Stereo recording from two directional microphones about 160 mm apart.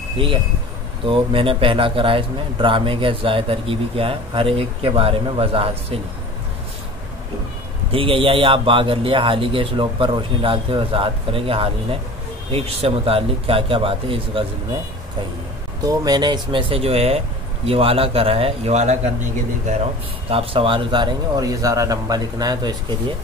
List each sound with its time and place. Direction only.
1.0 s a man's voice: 35° right (ahead or behind)
7.9 s a man's voice: 35° right (ahead or behind)
15.8 s a man's voice: 20° right (ahead or behind)